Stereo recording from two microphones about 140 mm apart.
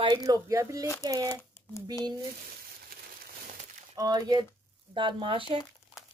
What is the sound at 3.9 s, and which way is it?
Speech, 30° right (ahead or behind).